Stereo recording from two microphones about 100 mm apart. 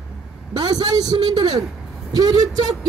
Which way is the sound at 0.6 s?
40° right (ahead or behind).